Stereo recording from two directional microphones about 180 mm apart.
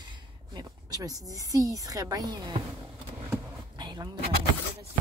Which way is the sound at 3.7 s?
25° right (ahead or behind).